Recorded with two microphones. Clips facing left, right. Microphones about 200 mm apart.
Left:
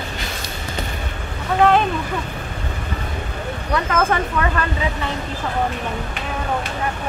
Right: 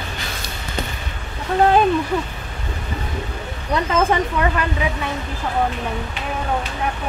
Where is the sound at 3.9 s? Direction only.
15° right (ahead or behind).